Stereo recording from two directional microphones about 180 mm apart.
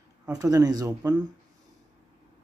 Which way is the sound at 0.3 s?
20° right (ahead or behind).